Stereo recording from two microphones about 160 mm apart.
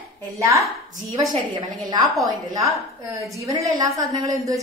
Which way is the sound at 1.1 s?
25° right (ahead or behind).